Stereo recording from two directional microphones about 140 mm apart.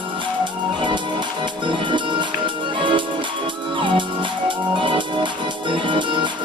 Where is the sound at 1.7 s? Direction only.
35° right (ahead or behind).